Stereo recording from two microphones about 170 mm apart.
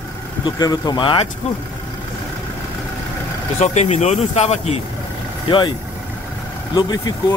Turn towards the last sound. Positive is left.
turn(degrees=25)  # may be behind; listen again after turning